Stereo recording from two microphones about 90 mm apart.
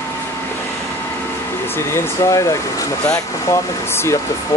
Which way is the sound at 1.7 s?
30° left (ahead or behind).